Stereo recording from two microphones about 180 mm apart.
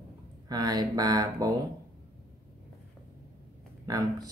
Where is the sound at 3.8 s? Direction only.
20° right (ahead or behind).